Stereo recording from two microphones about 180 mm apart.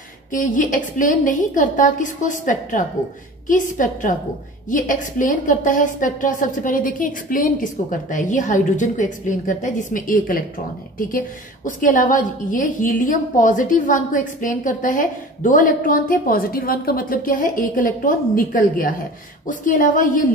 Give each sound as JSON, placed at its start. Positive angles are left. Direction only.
{"t": 0.3, "sound": "a woman's voice", "side_deg": 45}